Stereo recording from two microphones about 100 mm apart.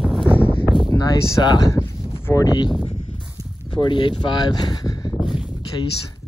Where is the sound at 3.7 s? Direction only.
55° left (ahead or behind).